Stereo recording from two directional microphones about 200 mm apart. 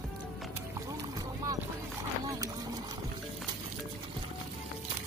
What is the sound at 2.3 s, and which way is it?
Horse, 20° right (ahead or behind).